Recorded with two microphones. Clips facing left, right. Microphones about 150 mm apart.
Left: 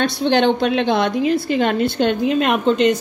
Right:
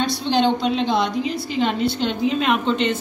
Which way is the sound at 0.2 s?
65° left (ahead or behind).